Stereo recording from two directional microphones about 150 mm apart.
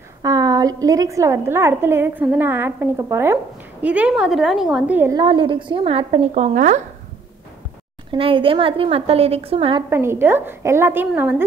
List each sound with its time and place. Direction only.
0.2 s a woman's voice: 25° right (ahead or behind)
5.1 s a woman's voice: 35° right (ahead or behind); by 6.8 s 55° right (ahead or behind)
8.1 s a woman's voice: 35° right (ahead or behind)
9.8 s a woman's voice: 15° right (ahead or behind)